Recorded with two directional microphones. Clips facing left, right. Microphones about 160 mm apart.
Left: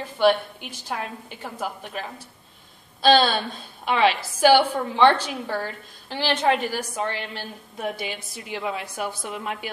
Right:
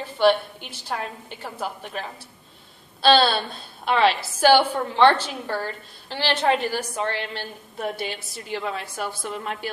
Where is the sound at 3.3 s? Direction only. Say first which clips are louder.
Even; 10° left (ahead or behind).